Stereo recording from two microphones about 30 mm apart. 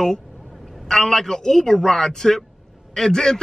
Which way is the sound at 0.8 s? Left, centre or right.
Centre.